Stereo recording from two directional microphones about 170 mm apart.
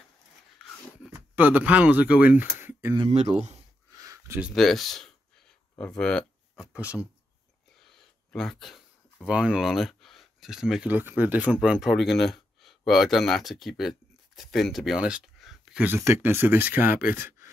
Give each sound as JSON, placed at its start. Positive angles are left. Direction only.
{"t": 1.1, "sound": "speech", "side_deg": -10}
{"t": 3.1, "sound": "speech", "side_deg": -40}
{"t": 4.0, "sound": "a sound", "side_deg": -20}
{"t": 4.4, "sound": "speech", "side_deg": 0}
{"t": 7.9, "sound": "speech", "side_deg": 5}
{"t": 17.0, "sound": "speech", "side_deg": 60}